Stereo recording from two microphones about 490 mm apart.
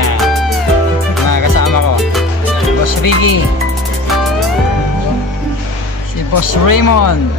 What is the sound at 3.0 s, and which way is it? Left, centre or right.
Music, left.